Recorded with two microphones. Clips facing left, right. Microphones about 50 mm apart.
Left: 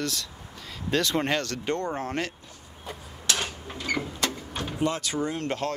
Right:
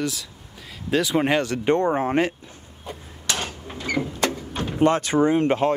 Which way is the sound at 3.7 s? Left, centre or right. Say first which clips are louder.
Right 5 dB; right.